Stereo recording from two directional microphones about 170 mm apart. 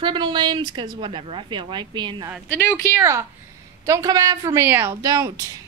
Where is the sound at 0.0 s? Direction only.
25° right (ahead or behind).